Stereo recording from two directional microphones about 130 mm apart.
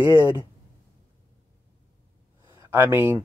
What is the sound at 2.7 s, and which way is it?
Speech, 15° right (ahead or behind).